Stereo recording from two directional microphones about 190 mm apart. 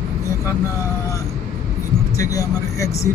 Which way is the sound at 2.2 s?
15° left (ahead or behind).